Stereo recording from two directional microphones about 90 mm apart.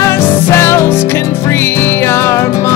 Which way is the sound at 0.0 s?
25° left (ahead or behind).